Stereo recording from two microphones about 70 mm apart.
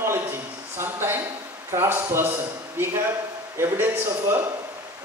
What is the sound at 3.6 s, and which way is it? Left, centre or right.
Speech, right.